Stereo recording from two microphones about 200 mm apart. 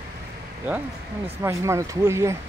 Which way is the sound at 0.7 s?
10° right (ahead or behind).